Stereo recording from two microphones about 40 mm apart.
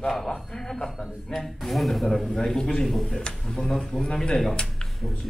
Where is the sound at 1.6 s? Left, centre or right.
Centre.